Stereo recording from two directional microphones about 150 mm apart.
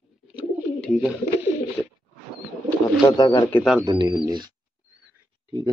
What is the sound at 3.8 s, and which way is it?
Speech, 25° right (ahead or behind).